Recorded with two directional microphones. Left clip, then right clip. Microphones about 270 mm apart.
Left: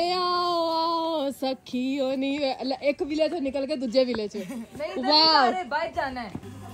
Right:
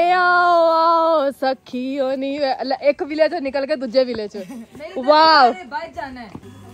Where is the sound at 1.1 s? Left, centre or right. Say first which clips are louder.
Right 10 dB; centre.